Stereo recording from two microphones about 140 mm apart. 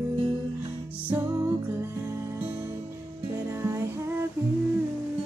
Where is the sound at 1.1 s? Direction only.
20° right (ahead or behind).